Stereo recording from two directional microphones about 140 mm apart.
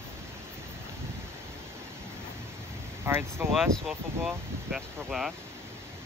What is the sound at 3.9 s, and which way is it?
Speech, 5° right (ahead or behind).